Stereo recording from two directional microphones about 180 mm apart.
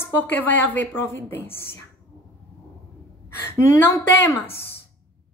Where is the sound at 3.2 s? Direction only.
15° left (ahead or behind).